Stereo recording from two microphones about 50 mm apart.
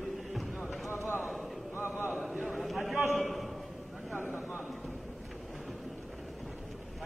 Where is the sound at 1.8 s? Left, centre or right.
Left.